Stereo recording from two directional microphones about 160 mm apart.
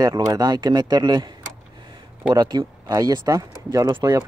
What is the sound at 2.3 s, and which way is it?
Speech, 25° right (ahead or behind).